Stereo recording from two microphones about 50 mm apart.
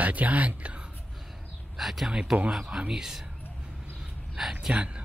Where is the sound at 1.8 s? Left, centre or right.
Centre.